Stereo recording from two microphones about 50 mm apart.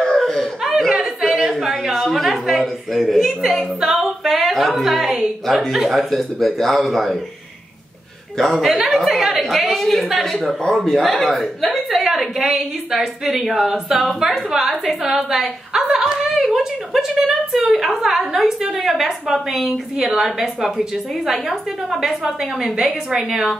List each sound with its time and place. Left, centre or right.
0.7 s a sound: centre
3.9 s a woman's voice: centre
8.4 s a woman's voice: centre